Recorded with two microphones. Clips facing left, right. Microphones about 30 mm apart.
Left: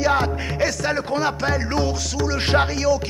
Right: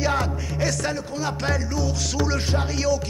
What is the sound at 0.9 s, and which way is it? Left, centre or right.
Music, left.